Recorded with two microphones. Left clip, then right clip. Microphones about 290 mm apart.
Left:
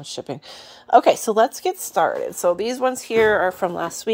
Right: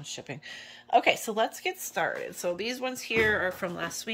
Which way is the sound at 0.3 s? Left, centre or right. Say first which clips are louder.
Left 7 dB; centre.